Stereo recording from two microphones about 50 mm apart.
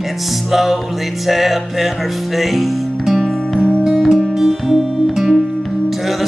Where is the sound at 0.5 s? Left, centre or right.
Centre.